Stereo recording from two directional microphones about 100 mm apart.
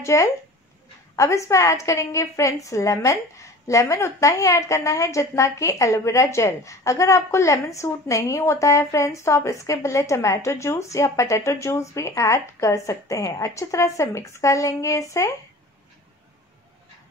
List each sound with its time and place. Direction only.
0.0 s a woman's voice: 30° left (ahead or behind)